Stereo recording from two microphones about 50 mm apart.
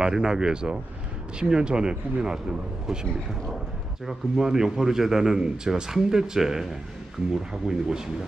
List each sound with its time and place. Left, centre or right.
0.0 s a man's voice: centre